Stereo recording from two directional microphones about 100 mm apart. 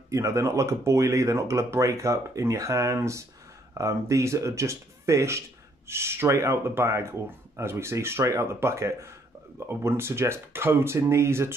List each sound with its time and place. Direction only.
0.1 s speech: 30° right (ahead or behind)